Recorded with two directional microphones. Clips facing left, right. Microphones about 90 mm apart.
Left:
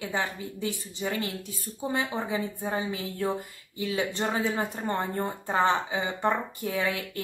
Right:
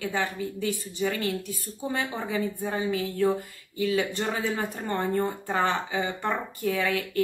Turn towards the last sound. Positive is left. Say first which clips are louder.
# right 2 dB
turn(degrees=20)  # may be behind; listen again after turning